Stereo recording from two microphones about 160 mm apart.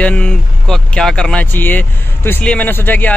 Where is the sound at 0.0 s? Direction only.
5° left (ahead or behind).